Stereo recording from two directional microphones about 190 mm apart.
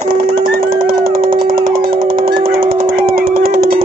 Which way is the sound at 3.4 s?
50° right (ahead or behind).